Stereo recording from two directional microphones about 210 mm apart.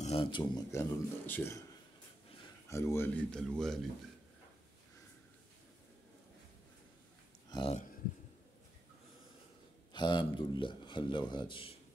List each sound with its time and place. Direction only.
0.0 s speech: 25° left (ahead or behind); by 1.6 s 10° left (ahead or behind)
2.7 s speech: 10° left (ahead or behind)
7.4 s a sound: 20° left (ahead or behind)
9.9 s speech: 20° left (ahead or behind)